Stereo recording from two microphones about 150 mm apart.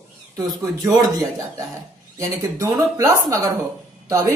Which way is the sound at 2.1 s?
20° right (ahead or behind).